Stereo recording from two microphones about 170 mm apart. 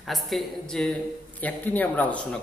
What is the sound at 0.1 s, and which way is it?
A man's voice, centre (ahead or behind).